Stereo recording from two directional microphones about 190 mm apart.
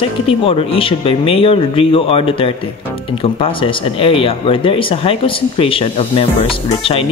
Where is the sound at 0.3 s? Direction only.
30° left (ahead or behind).